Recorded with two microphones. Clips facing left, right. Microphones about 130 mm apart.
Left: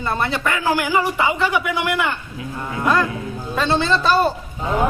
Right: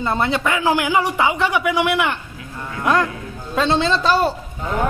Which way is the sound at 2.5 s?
15° left (ahead or behind).